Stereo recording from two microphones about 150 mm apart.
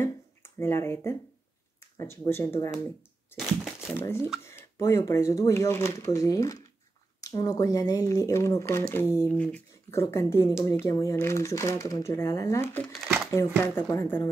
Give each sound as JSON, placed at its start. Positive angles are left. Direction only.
{"t": 0.0, "sound": "finger snapping", "side_deg": 15}
{"t": 1.8, "sound": "speech", "side_deg": 15}
{"t": 3.3, "sound": "crumpling", "side_deg": -5}
{"t": 4.0, "sound": "speech", "side_deg": 15}